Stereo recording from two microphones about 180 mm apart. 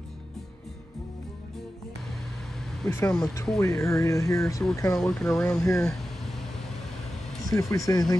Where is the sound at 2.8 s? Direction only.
15° left (ahead or behind).